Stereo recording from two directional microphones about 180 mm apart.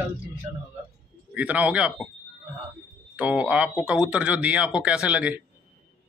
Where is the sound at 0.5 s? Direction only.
15° right (ahead or behind).